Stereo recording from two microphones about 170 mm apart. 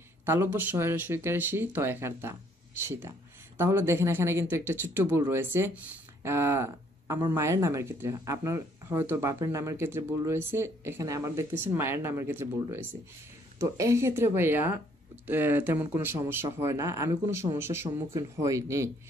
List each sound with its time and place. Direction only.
0.2 s a woman's voice: 15° right (ahead or behind)
3.5 s a woman's voice: 15° right (ahead or behind)